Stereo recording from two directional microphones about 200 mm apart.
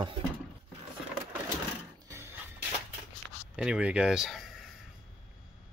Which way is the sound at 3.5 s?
5° right (ahead or behind).